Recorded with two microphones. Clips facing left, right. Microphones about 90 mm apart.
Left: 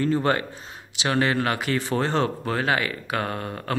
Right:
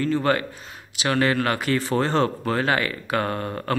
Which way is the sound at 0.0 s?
25° left (ahead or behind).